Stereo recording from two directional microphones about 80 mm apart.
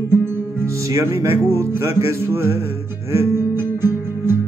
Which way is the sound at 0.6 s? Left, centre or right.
Right.